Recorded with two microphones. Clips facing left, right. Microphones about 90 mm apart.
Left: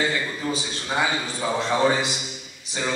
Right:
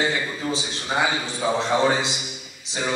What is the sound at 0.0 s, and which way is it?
A man's voice, 20° right (ahead or behind).